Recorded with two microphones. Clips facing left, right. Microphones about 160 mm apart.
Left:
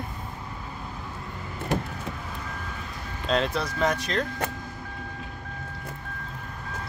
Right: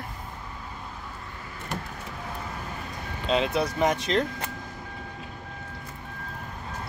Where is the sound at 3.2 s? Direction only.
5° right (ahead or behind).